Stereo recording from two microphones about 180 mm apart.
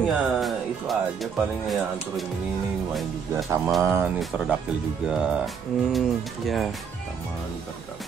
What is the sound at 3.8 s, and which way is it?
Speech, 10° right (ahead or behind).